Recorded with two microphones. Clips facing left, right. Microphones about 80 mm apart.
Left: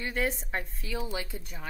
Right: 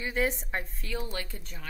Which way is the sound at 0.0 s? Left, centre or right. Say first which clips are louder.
Right 1 dB; centre.